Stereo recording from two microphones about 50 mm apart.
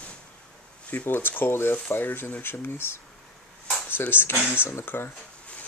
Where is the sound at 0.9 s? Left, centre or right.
Left.